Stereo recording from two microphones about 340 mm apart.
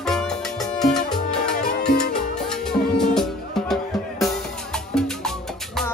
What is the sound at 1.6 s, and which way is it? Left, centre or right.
Music, left.